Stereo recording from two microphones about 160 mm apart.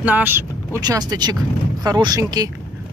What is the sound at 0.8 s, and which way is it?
Speech, 25° right (ahead or behind).